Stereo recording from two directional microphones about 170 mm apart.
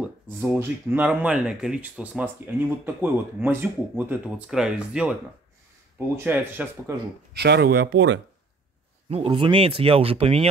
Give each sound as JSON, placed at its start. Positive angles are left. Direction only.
{"t": 0.0, "sound": "speech", "side_deg": -10}
{"t": 7.3, "sound": "speech", "side_deg": -80}
{"t": 9.1, "sound": "speech", "side_deg": -35}